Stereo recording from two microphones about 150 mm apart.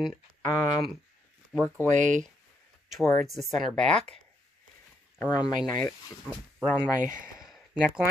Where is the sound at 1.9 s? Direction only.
55° right (ahead or behind).